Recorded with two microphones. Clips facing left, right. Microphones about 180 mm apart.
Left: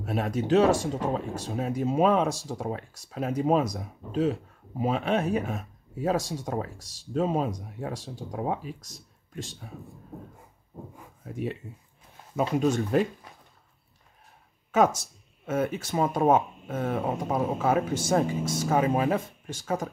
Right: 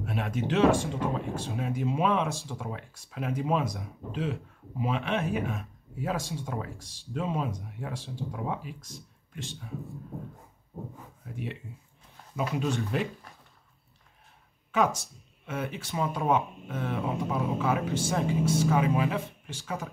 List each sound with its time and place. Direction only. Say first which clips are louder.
0.0 s speech: left 3 dB; 40° left (ahead or behind)
12.4 s speech: left 5 dB; 45° left (ahead or behind)
15.4 s speech: left 7 dB; 45° left (ahead or behind)